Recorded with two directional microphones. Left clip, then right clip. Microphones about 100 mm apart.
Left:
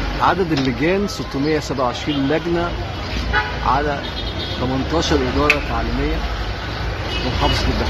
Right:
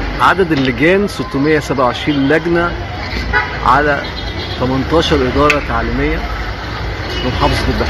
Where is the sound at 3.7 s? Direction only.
35° right (ahead or behind).